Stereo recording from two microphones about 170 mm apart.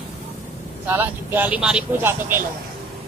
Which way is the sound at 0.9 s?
10° right (ahead or behind).